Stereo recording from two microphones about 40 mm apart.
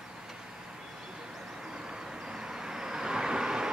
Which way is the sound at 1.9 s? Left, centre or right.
Centre.